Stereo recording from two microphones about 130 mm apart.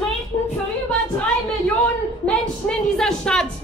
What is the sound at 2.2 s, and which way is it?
A woman's voice, 5° left (ahead or behind).